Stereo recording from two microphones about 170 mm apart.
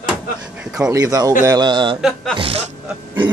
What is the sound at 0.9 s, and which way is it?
A man's voice, 20° right (ahead or behind).